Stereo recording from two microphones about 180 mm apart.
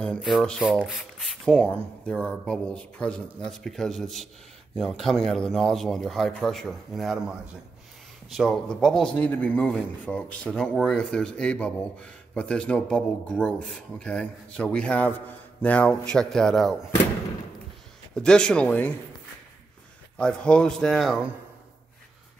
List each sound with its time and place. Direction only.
0.0 s speech: centre (ahead or behind)
18.1 s speech: 5° left (ahead or behind)
20.2 s speech: 5° left (ahead or behind)